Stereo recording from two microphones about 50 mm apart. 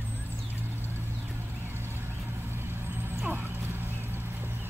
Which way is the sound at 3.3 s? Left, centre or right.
Right.